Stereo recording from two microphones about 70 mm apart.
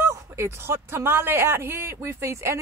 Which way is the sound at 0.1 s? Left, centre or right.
Right.